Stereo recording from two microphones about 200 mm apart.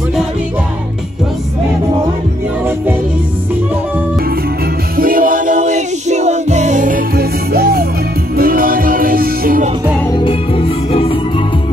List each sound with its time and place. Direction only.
4.9 s music: 45° right (ahead or behind)
10.2 s music: 30° left (ahead or behind)